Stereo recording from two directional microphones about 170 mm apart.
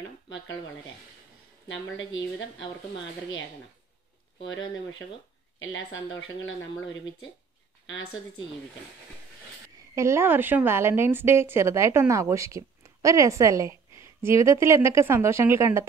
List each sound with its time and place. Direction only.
1.7 s speech: 90° left
4.4 s speech: 90° left
6.4 s speech: 90° left
9.9 s a woman's voice: 15° right (ahead or behind)